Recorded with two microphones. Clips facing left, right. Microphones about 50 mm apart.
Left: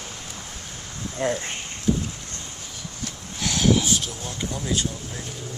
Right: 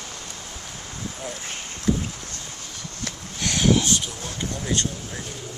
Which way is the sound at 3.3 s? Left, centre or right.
Centre.